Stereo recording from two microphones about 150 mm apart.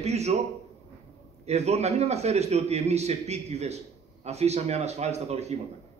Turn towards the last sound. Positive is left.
turn(degrees=-45)  # may be behind; listen again after turning